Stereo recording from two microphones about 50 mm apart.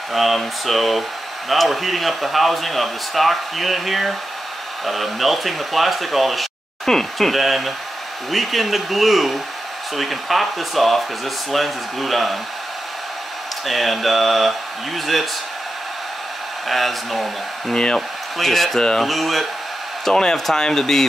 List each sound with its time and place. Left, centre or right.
0.1 s speech: centre
13.7 s speech: centre
16.6 s speech: centre
17.7 s speech: centre
18.4 s speech: centre
18.8 s speech: centre
19.0 s speech: centre
20.1 s speech: centre